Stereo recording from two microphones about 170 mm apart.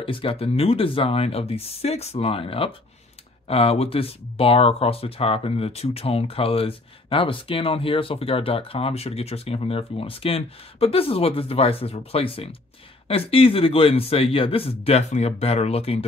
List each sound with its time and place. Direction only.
0.0 s speech: 35° left (ahead or behind)